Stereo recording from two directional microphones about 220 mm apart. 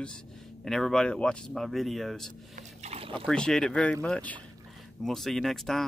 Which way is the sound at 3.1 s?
5° left (ahead or behind).